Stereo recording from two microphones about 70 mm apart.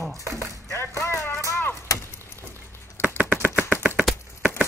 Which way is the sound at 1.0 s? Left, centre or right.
Left.